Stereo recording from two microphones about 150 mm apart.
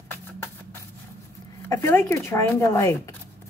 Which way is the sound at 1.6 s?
20° left (ahead or behind).